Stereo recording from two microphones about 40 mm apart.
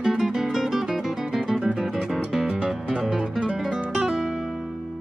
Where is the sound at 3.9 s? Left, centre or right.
Centre.